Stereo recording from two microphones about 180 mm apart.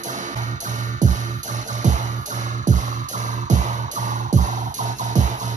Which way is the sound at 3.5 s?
45° right (ahead or behind).